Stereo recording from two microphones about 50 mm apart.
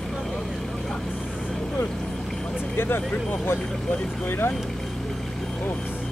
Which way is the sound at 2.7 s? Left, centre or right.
Left.